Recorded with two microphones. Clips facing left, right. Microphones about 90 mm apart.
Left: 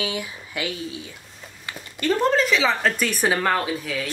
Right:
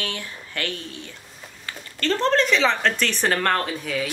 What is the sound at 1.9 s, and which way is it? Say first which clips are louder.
Speech: left 1 dB; 10° left (ahead or behind).